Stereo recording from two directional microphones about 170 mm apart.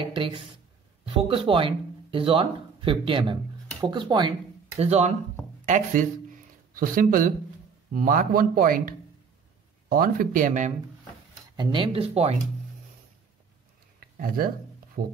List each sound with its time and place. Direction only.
0.0 s speech: 30° right (ahead or behind)
4.7 s speech: 40° right (ahead or behind)
11.5 s speech: 30° right (ahead or behind)
13.9 s a sound: 60° right (ahead or behind)
15.0 s speech: 65° right (ahead or behind)